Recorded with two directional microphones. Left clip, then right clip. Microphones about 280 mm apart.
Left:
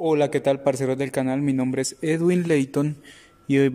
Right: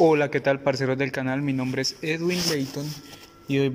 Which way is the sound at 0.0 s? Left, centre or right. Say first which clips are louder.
Right 1 dB; centre.